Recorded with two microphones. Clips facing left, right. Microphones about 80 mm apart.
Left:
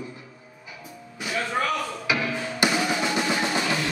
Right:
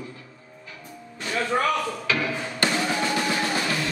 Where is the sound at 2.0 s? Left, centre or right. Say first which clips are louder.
Even; centre.